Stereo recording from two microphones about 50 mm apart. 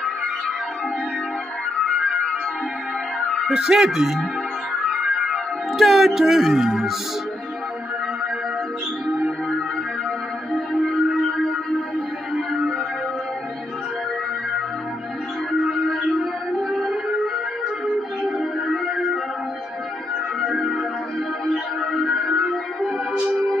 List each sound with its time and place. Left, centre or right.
3.4 s speech: centre
5.0 s music: centre
10.5 s music: centre
15.9 s music: centre
21.5 s music: centre